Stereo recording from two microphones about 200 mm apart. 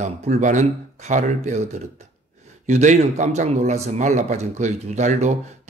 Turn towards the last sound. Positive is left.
turn(degrees=-35)  # may be behind; listen again after turning